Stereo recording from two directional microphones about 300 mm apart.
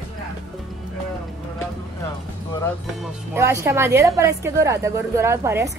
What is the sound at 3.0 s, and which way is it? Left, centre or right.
Speech, centre.